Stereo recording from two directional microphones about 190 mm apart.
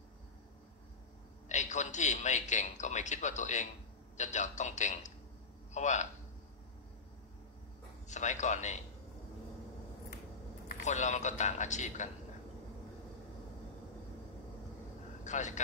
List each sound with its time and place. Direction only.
1.5 s a man's voice: 40° left (ahead or behind)
8.1 s a man's voice: 40° left (ahead or behind)
10.7 s a man's voice: 40° left (ahead or behind)
15.2 s a man's voice: 40° left (ahead or behind)